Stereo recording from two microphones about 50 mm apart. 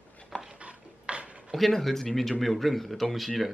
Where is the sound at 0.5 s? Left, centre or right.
Right.